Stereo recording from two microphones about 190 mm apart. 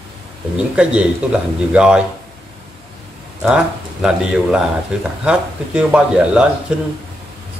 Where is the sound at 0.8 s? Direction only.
5° right (ahead or behind).